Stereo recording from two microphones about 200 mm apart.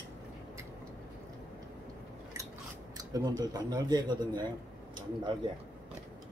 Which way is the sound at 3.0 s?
20° right (ahead or behind).